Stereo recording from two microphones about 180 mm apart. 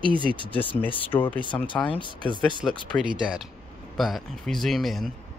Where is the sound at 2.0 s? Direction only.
25° left (ahead or behind).